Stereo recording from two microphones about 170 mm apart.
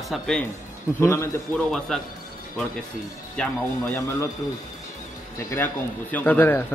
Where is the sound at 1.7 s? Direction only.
Centre (ahead or behind).